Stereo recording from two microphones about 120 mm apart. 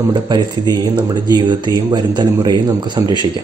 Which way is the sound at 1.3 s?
35° right (ahead or behind).